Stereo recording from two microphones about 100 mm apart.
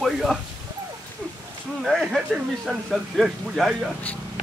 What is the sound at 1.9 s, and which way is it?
A man's voice, centre (ahead or behind).